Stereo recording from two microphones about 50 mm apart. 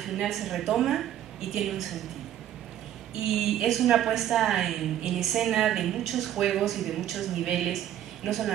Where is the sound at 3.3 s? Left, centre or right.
Centre.